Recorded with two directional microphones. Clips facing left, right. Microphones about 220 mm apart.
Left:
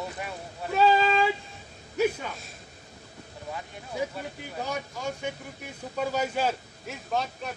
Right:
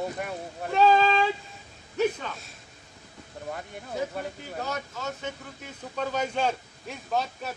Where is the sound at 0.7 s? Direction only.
5° left (ahead or behind).